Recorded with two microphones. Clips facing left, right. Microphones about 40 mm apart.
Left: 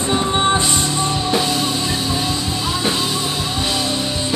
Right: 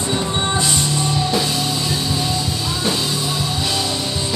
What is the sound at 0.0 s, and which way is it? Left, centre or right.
Music, left.